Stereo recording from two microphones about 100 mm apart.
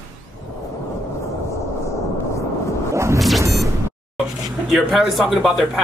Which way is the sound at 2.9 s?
30° right (ahead or behind).